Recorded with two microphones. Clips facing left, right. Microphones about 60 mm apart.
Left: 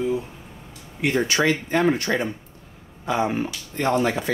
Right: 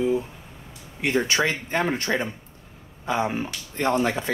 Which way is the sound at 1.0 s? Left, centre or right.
Right.